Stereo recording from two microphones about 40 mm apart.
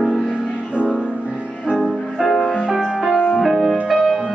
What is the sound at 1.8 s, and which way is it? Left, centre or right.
Music, centre.